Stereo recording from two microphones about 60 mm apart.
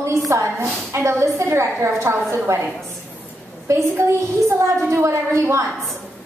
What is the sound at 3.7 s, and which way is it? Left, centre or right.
A woman's voice, right.